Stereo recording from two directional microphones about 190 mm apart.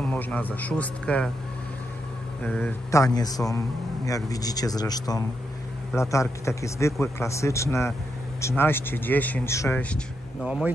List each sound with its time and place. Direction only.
0.0 s speech: 10° left (ahead or behind)
2.4 s a man's voice: 10° left (ahead or behind)
10.4 s speech: 5° right (ahead or behind)